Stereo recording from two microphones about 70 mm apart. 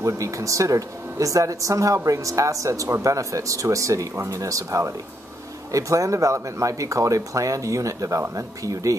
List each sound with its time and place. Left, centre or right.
0.0 s speech: right